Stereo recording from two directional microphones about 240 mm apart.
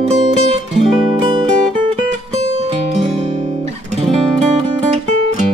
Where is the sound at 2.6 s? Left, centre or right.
Right.